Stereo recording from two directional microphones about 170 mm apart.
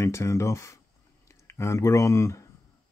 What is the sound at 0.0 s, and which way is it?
Speech, 15° left (ahead or behind).